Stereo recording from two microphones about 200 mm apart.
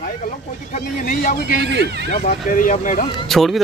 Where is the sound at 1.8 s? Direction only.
55° right (ahead or behind).